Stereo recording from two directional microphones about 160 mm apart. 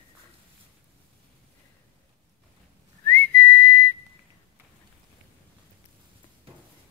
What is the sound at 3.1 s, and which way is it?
Whistling, 10° left (ahead or behind).